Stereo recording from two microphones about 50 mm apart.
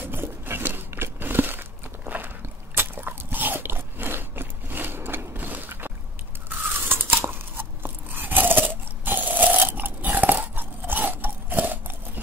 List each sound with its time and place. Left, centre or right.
0.0 s crumpling: right
6.8 s tearing: right
7.1 s crunch: right